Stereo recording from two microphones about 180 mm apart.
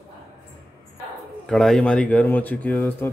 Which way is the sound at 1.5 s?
Centre (ahead or behind).